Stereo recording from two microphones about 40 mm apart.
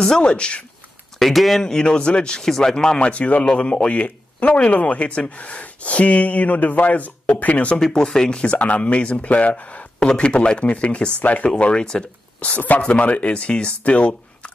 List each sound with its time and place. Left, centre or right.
0.3 s a man's voice: left
1.2 s speech: centre
1.6 s a man's voice: centre; by 7.7 s left
7.7 s speech: centre
8.5 s speech: left
10.1 s a man's voice: left
10.6 s speech: left
11.6 s a man's voice: left
12.5 s speech: left